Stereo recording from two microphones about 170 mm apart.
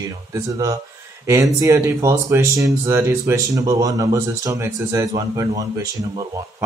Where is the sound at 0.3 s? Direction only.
20° right (ahead or behind).